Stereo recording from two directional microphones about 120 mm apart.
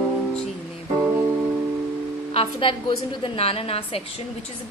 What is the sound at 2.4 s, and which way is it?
A woman's voice, 45° left (ahead or behind).